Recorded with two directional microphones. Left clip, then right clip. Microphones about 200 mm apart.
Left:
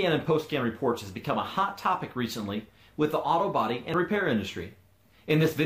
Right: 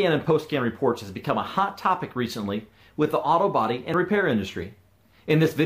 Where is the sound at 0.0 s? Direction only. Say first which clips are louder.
Right 4 dB; 45° right (ahead or behind).